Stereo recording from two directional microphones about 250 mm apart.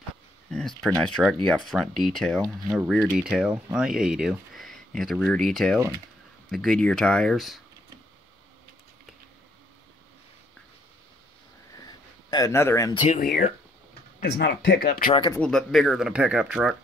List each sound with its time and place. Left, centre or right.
0.5 s speech: centre
11.8 s a sound: centre
13.0 s speech: left
15.3 s speech: centre